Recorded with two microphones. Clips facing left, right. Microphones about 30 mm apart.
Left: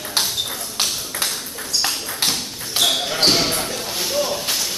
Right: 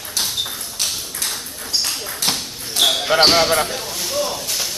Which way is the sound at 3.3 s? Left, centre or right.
Centre.